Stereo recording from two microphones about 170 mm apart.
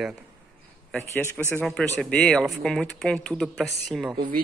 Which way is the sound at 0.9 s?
10° left (ahead or behind).